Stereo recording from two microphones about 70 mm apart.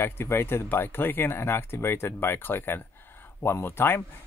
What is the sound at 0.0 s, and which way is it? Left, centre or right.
Speech, left.